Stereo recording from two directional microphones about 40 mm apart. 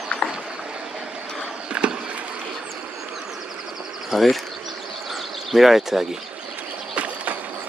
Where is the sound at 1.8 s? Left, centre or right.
Right.